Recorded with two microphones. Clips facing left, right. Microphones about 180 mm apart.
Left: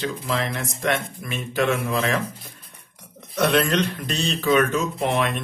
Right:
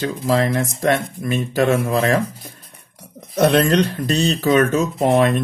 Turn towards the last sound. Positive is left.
turn(degrees=-40)  # may be behind; listen again after turning